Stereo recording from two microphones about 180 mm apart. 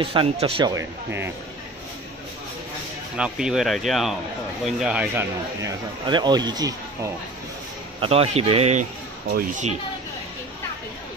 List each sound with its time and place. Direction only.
0.0 s speech: 30° right (ahead or behind)
0.7 s speech: 10° right (ahead or behind)
3.2 s speech: 5° right (ahead or behind)
6.0 s speech: 25° right (ahead or behind)
8.0 s speech: 35° right (ahead or behind)